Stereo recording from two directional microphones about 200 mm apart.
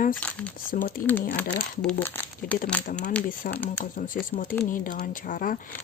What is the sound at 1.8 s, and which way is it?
Speech, 5° left (ahead or behind).